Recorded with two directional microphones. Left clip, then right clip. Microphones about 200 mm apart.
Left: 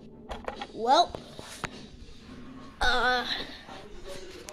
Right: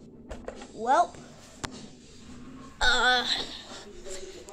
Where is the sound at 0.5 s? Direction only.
45° left (ahead or behind).